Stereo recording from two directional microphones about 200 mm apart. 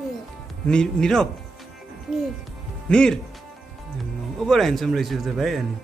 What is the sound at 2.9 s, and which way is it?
Speech, 5° left (ahead or behind).